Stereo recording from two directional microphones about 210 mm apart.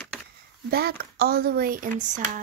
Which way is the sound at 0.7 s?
45° right (ahead or behind).